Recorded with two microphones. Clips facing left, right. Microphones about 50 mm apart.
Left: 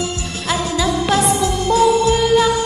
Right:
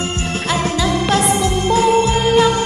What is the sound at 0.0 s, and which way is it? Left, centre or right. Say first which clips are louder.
Music: right 2 dB; right.